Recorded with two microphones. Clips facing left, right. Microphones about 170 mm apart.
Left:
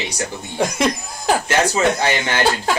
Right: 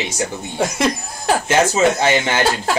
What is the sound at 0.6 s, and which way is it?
Speech, centre (ahead or behind).